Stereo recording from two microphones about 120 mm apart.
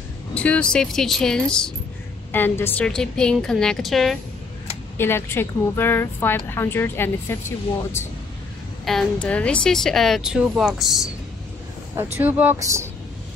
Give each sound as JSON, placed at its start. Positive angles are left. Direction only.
{"t": 0.3, "sound": "a woman's voice", "side_deg": 10}
{"t": 2.3, "sound": "a woman's voice", "side_deg": 20}
{"t": 2.8, "sound": "a woman's voice", "side_deg": 5}
{"t": 4.9, "sound": "speech", "side_deg": 20}
{"t": 8.8, "sound": "a woman's voice", "side_deg": 5}
{"t": 11.9, "sound": "speech", "side_deg": -20}
{"t": 12.5, "sound": "speech", "side_deg": -25}